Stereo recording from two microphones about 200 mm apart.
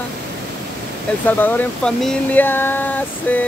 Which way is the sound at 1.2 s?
10° left (ahead or behind).